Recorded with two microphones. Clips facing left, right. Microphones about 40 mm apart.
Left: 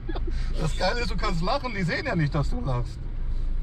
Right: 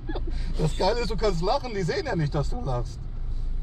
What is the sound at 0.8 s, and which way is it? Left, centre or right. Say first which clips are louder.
Speech: right 3 dB; centre.